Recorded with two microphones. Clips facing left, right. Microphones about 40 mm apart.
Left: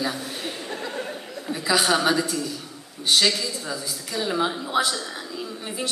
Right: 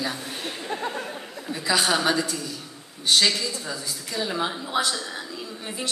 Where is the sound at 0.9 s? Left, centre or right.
Centre.